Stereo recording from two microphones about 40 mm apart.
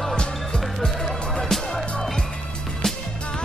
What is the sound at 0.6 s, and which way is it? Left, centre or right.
Music, centre.